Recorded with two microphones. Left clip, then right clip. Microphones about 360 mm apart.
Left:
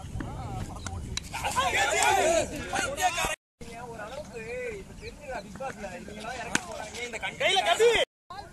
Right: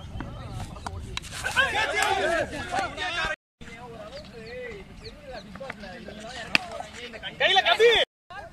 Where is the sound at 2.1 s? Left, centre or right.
Centre.